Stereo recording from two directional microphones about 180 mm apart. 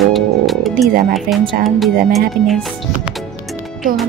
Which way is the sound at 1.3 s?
55° right (ahead or behind).